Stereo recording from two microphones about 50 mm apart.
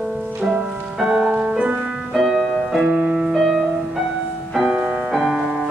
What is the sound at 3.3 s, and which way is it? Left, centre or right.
Music, centre.